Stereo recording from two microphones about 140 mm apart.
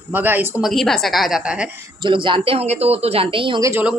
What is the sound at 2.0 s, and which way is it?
A woman's voice, 35° right (ahead or behind).